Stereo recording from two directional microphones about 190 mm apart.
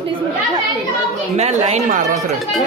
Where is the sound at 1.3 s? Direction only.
35° right (ahead or behind).